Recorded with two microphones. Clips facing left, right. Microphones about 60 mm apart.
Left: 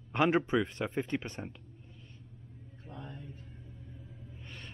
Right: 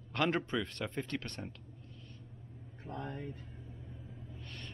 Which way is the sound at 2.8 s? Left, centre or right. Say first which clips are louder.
Right 5 dB; right.